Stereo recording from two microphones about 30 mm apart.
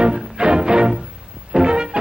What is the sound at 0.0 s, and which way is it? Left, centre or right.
Music, right.